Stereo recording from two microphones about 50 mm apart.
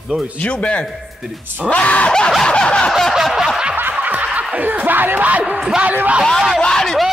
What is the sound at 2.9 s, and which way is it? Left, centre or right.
Snicker, centre.